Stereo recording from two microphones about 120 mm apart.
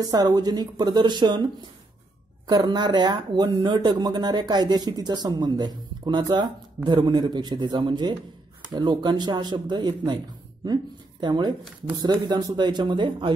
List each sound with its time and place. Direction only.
0.0 s speech: 35° right (ahead or behind)